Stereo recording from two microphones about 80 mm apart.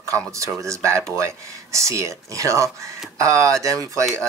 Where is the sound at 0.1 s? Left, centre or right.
Right.